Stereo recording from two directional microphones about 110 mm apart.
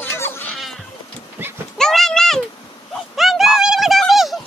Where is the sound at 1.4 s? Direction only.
20° right (ahead or behind).